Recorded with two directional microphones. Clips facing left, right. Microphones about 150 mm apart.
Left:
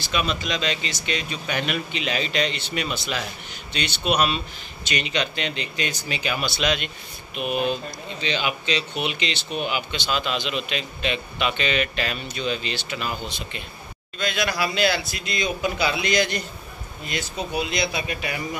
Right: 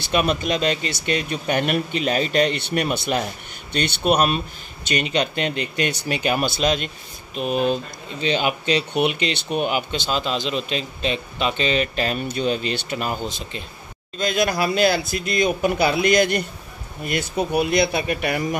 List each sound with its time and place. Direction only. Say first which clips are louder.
0.1 s speech: right 5 dB; 50° right (ahead or behind)